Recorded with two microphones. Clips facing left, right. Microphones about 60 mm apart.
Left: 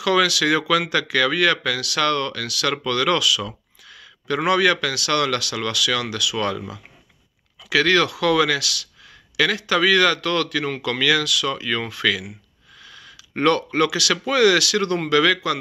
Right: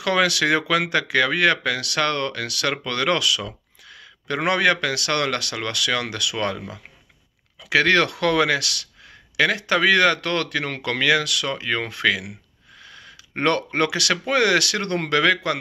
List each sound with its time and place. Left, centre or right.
0.0 s speech: right
3.8 s a sound: right
4.4 s speech: right
6.3 s speech: right
7.7 s speech: right